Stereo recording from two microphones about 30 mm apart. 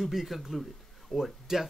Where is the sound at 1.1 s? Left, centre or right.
Centre.